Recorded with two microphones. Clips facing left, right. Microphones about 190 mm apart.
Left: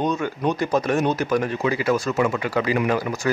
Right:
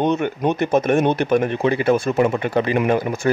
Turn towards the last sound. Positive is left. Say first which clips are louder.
# right 4 dB
turn(degrees=-25)  # may be behind; listen again after turning